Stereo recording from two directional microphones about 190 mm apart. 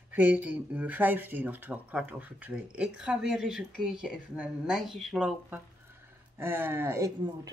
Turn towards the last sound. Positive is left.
turn(degrees=-15)  # may be behind; listen again after turning